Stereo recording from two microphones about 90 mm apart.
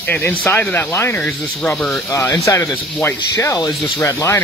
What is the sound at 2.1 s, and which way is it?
Speech, 35° left (ahead or behind).